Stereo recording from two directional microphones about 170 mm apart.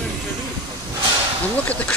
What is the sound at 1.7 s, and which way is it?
Speech, 10° left (ahead or behind).